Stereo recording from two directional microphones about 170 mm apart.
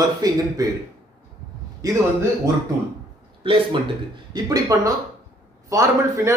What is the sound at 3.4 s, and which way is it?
A man's voice, 30° right (ahead or behind).